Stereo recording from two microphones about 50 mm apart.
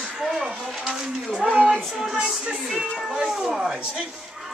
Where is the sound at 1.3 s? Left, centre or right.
Right.